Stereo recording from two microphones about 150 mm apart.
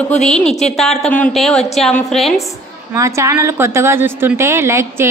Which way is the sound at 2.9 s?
20° right (ahead or behind).